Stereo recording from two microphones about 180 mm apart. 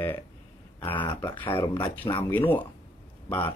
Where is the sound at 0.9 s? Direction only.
25° left (ahead or behind).